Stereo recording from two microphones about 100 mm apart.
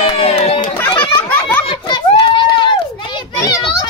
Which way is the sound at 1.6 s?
55° left (ahead or behind).